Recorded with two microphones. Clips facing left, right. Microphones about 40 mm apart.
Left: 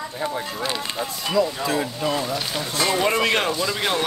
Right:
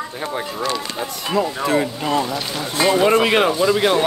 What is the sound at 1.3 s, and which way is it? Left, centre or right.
Speech, right.